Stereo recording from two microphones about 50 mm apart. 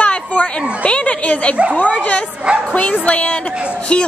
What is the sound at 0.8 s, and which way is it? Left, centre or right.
A woman's voice, left.